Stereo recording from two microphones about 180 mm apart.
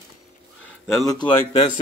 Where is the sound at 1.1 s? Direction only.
25° left (ahead or behind).